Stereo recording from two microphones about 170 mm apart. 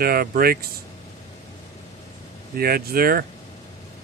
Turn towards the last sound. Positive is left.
turn(degrees=-60)  # may be behind; listen again after turning